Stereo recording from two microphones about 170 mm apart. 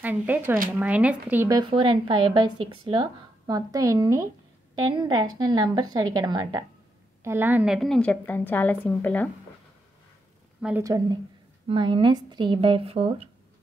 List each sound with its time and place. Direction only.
0.0 s speech: 10° right (ahead or behind)
1.6 s speech: 30° right (ahead or behind)
7.2 s a woman's voice: 10° right (ahead or behind); by 9.3 s 10° left (ahead or behind)
10.8 s speech: 20° right (ahead or behind); by 13.3 s 35° right (ahead or behind)